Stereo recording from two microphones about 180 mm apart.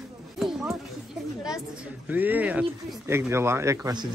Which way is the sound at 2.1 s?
10° right (ahead or behind).